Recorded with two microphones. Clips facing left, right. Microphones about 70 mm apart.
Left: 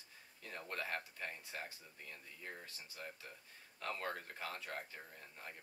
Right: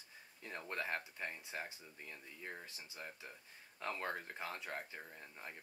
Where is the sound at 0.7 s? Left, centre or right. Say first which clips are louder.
Right 2 dB; centre.